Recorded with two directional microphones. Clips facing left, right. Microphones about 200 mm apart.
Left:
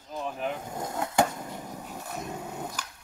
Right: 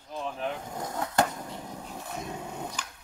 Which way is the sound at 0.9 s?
5° left (ahead or behind).